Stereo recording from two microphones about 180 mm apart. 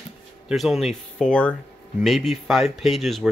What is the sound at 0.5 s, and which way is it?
Speech, centre (ahead or behind).